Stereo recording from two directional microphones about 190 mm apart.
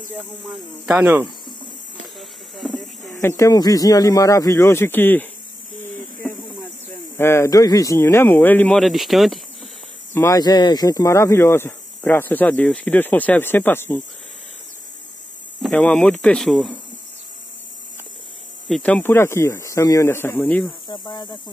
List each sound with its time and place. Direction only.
0.8 s speech: 5° right (ahead or behind)
2.1 s a sound: centre (ahead or behind)
3.0 s a man's voice: 15° left (ahead or behind)
10.1 s speech: 15° left (ahead or behind)
15.6 s speech: 5° left (ahead or behind)
18.7 s speech: 5° left (ahead or behind)
20.9 s speech: 25° left (ahead or behind)